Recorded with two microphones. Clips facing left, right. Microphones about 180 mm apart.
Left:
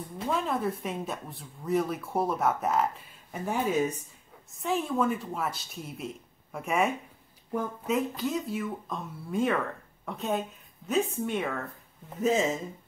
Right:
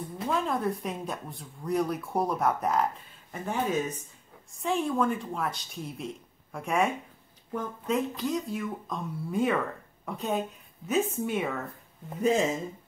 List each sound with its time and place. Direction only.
0.2 s a woman's voice: centre (ahead or behind)